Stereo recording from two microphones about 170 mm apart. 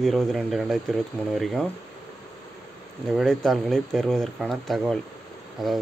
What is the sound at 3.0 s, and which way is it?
Speech, centre (ahead or behind).